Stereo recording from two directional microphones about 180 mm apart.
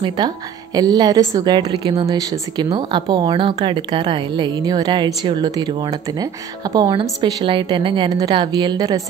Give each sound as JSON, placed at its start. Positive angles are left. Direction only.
{"t": 0.7, "sound": "a woman's voice", "side_deg": -20}